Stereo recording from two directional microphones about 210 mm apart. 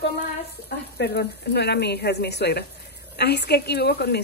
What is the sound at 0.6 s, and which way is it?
A woman's voice, 50° left (ahead or behind).